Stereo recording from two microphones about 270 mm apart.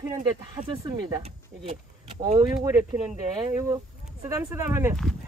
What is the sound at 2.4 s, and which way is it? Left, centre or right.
Speech, centre.